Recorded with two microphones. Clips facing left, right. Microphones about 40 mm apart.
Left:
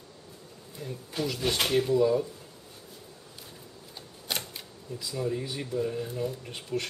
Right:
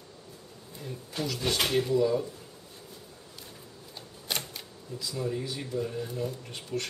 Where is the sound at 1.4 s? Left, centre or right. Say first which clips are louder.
Left 1 dB; centre.